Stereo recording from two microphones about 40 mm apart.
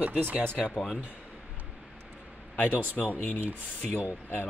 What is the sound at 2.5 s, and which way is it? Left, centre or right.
Speech, left.